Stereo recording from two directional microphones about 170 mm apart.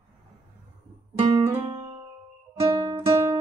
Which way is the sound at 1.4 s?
15° right (ahead or behind).